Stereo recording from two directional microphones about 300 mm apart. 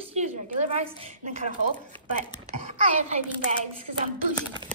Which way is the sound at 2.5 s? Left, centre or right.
Right.